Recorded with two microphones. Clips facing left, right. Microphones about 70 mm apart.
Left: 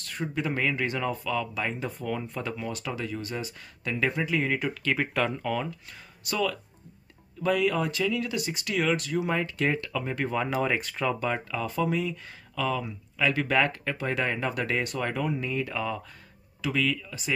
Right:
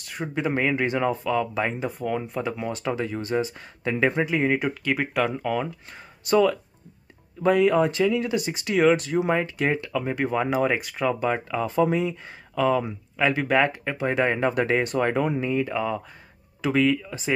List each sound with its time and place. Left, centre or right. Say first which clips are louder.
0.0 s speech: right 3 dB; centre
4.9 s speech: right 3 dB; centre
5.9 s speech: right 11 dB; right
15.4 s speech: right 5 dB; centre
16.6 s speech: right 6 dB; right